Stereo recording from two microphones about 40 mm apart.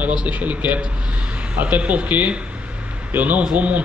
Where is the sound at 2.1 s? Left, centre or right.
Right.